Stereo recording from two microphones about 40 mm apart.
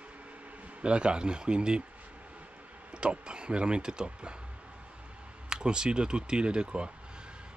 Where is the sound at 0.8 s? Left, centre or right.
Right.